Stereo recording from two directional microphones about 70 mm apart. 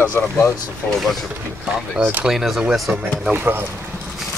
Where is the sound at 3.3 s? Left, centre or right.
Right.